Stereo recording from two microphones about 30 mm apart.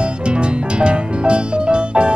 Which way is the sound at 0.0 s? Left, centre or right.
Right.